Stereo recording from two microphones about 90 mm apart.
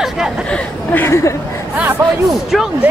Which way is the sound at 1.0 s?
30° left (ahead or behind).